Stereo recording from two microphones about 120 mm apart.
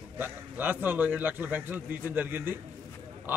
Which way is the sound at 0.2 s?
15° right (ahead or behind).